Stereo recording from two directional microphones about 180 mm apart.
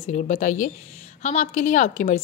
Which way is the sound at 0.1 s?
45° left (ahead or behind).